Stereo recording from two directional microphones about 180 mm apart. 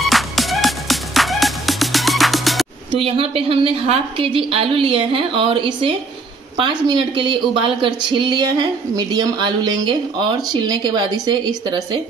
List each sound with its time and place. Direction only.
0.0 s music: centre (ahead or behind)
2.9 s a woman's voice: 30° right (ahead or behind)